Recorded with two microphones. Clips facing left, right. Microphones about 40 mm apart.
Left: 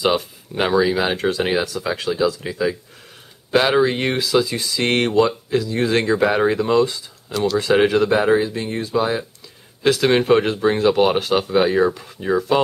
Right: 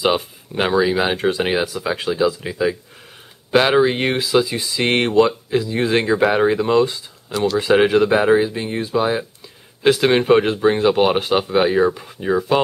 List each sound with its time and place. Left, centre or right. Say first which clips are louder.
0.0 s speech: right 1 dB; centre